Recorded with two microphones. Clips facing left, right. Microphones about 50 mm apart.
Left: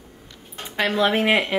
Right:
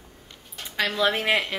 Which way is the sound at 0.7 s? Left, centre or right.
Centre.